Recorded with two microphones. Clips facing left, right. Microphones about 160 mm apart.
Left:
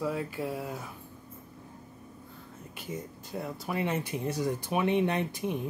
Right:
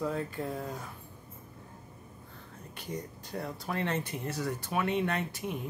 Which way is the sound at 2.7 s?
5° left (ahead or behind).